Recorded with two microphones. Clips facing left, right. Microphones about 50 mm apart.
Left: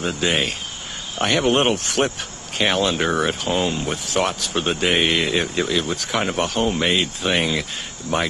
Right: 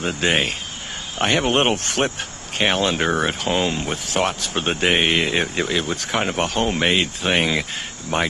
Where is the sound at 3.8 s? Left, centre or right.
Right.